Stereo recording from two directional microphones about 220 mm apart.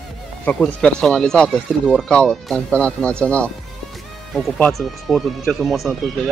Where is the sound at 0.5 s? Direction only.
5° left (ahead or behind).